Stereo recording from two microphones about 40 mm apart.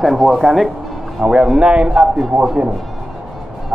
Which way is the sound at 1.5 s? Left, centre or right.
Right.